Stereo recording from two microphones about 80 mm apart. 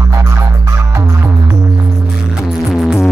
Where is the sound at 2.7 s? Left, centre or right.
Centre.